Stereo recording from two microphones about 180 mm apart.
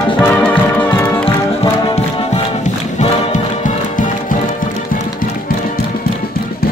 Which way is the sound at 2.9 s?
40° left (ahead or behind).